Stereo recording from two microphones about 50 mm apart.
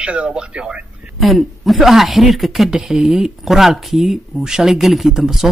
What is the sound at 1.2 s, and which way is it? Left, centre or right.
Speech, centre.